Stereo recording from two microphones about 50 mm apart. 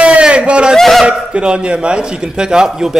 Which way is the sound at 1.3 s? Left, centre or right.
Right.